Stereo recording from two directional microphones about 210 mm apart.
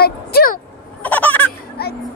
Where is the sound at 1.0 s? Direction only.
10° left (ahead or behind).